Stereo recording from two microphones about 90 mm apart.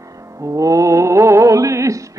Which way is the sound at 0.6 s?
40° right (ahead or behind).